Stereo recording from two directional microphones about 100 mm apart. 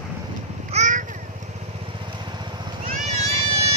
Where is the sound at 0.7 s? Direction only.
90° right.